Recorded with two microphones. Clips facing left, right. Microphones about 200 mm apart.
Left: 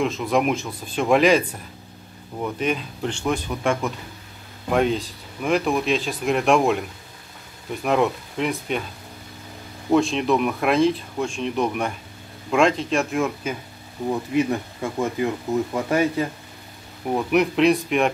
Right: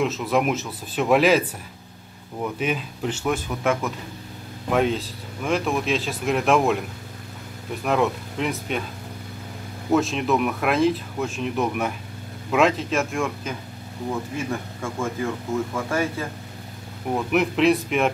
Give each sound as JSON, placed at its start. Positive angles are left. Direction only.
{"t": 0.0, "sound": "speech", "side_deg": -5}
{"t": 2.4, "sound": "speech", "side_deg": -5}
{"t": 7.8, "sound": "speech", "side_deg": 0}
{"t": 9.8, "sound": "speech", "side_deg": 0}
{"t": 14.3, "sound": "speech", "side_deg": 20}
{"t": 17.1, "sound": "speech", "side_deg": 0}